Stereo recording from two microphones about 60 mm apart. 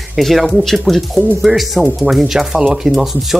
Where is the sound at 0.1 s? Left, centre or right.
Centre.